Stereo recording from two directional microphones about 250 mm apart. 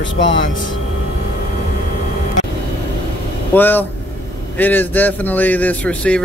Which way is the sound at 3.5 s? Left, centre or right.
Centre.